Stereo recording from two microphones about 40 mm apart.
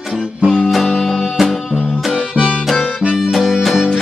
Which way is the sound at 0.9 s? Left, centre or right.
Centre.